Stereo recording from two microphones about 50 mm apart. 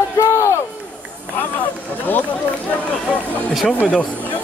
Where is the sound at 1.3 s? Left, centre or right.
Left.